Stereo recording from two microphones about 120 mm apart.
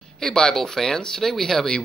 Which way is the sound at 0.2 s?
5° left (ahead or behind).